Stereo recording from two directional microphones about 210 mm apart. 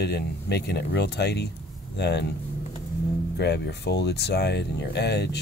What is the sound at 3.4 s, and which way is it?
Speech, 55° left (ahead or behind).